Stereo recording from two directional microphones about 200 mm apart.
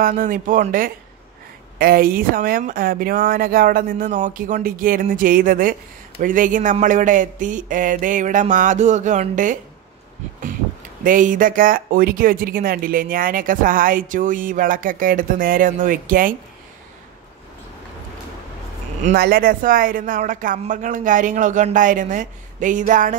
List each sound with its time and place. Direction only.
0.0 s speech: 45° right (ahead or behind)
11.1 s speech: 40° right (ahead or behind)
19.1 s speech: 50° right (ahead or behind)